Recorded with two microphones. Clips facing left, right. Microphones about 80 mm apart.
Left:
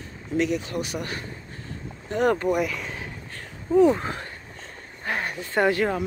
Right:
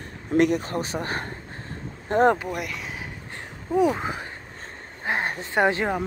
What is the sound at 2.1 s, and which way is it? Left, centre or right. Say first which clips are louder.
Speech: right 5 dB; right.